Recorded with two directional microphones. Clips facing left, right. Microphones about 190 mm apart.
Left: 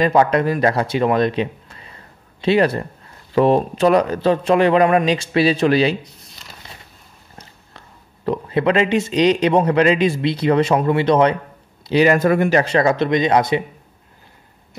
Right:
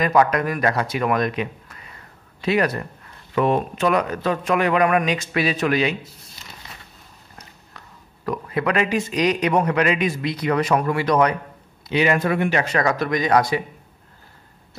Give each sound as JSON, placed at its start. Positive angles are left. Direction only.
{"t": 0.0, "sound": "speech", "side_deg": 30}
{"t": 8.3, "sound": "speech", "side_deg": 30}
{"t": 11.9, "sound": "speech", "side_deg": 40}